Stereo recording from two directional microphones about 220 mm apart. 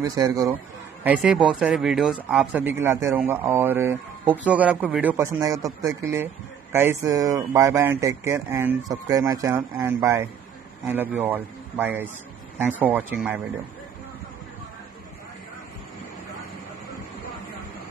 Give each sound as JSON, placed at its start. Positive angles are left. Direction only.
{"t": 0.0, "sound": "a man's voice", "side_deg": -15}
{"t": 1.0, "sound": "a man's voice", "side_deg": -5}